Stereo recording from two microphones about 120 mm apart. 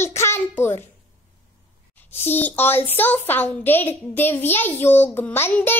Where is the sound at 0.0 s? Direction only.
20° left (ahead or behind).